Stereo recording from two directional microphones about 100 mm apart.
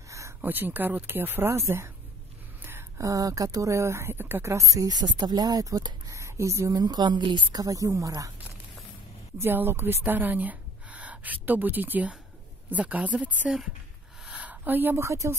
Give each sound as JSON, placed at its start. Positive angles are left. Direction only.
{"t": 0.4, "sound": "speech", "side_deg": -20}
{"t": 9.4, "sound": "a woman's voice", "side_deg": -20}
{"t": 14.2, "sound": "a sound", "side_deg": -10}